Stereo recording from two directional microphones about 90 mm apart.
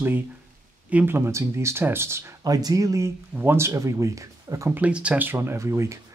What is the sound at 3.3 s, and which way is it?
Speech, 25° right (ahead or behind).